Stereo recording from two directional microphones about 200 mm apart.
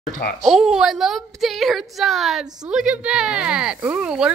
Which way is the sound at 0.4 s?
Centre (ahead or behind).